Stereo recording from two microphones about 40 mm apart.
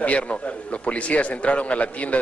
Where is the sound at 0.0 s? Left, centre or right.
Left.